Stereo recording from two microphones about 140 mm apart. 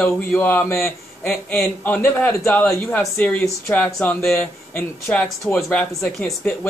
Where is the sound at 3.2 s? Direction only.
10° left (ahead or behind).